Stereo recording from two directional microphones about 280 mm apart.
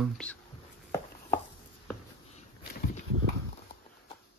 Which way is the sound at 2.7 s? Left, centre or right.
Left.